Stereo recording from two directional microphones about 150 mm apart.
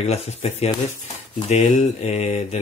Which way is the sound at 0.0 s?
45° left (ahead or behind).